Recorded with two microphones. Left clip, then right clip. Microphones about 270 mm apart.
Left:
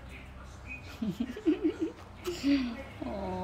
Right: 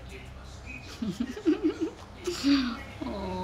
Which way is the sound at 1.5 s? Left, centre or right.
Centre.